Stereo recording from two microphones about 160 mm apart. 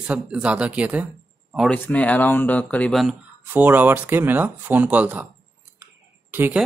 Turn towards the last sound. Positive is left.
turn(degrees=-15)  # may be behind; listen again after turning